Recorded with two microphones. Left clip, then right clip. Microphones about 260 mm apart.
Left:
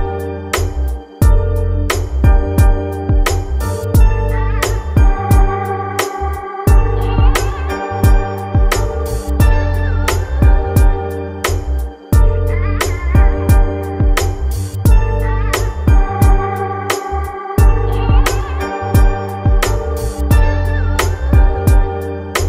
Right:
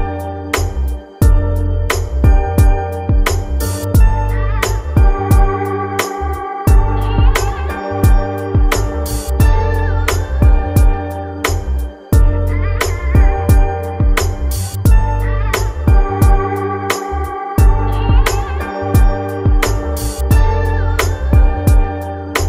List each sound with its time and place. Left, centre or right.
1.9 s music: centre
12.7 s music: centre
15.5 s music: centre